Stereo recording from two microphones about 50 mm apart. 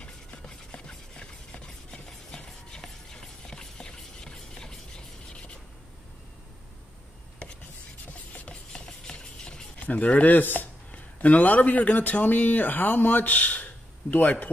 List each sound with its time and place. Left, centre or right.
0.0 s a sound: centre
8.1 s filing: left
9.8 s a man's voice: left
10.9 s a man's voice: left